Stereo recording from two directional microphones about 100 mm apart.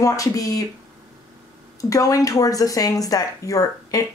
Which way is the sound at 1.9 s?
35° left (ahead or behind).